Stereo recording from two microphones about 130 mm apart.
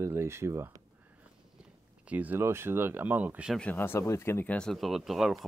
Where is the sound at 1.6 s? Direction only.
10° right (ahead or behind).